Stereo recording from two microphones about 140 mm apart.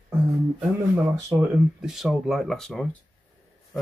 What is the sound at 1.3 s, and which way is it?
Speech, 20° right (ahead or behind).